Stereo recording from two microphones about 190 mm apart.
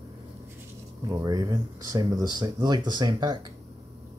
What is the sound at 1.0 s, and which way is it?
Speech, 20° right (ahead or behind).